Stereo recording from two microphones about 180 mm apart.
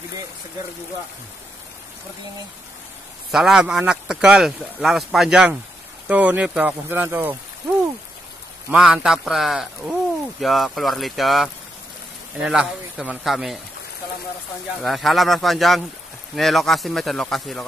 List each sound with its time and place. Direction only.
3.3 s speech: centre (ahead or behind)
8.6 s speech: 5° right (ahead or behind)
14.7 s speech: centre (ahead or behind)